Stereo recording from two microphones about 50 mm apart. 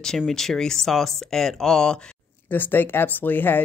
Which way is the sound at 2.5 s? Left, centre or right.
Left.